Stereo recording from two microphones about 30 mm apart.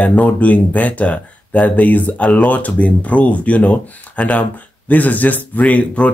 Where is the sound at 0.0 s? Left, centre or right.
Left.